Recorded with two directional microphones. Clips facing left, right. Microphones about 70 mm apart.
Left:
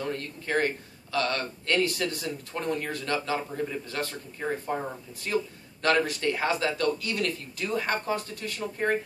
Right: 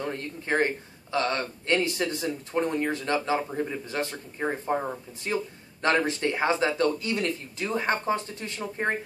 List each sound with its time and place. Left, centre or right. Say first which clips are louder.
0.0 s speech: even; right